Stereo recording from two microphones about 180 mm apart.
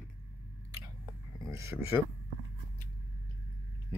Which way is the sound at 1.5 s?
15° right (ahead or behind).